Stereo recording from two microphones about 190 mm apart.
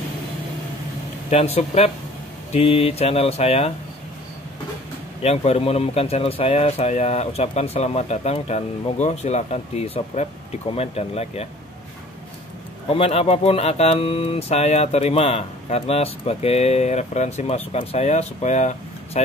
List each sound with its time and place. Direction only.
1.3 s speech: 35° left (ahead or behind)
5.2 s speech: 35° left (ahead or behind)
12.9 s speech: 30° left (ahead or behind)